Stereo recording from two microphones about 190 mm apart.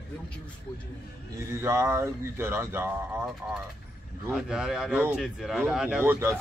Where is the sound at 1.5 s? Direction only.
15° right (ahead or behind).